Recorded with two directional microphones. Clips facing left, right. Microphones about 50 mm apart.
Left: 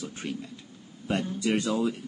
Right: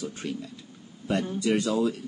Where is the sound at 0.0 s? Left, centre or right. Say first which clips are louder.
Right 2 dB; left.